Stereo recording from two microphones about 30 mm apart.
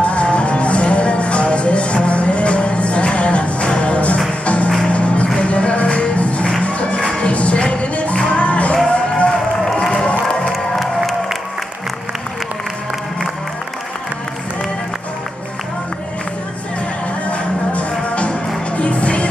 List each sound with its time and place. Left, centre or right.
0.0 s music: left
7.0 s music: left
8.8 s music: left
10.5 s crowd: centre
17.3 s music: left